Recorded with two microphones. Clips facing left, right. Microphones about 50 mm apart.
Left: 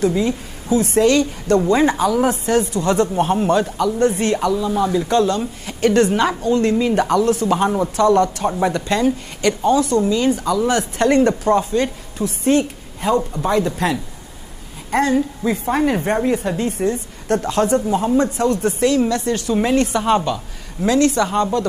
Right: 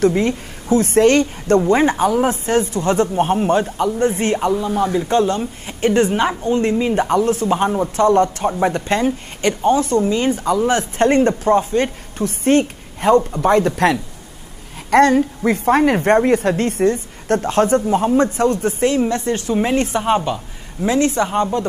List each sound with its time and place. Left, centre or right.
0.0 s a woman's voice: right
16.9 s a woman's voice: right